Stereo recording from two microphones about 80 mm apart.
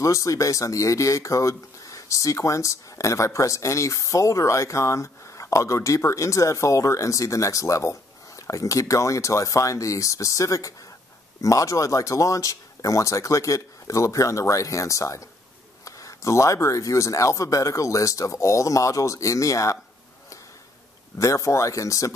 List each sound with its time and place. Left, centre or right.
0.0 s speech: left
21.2 s speech: left